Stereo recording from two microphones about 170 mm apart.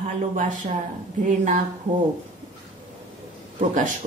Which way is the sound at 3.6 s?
50° right (ahead or behind).